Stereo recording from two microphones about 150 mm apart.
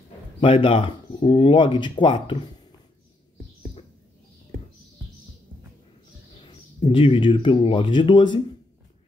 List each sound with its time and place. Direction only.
0.4 s speech: 35° left (ahead or behind)
6.9 s speech: 35° left (ahead or behind)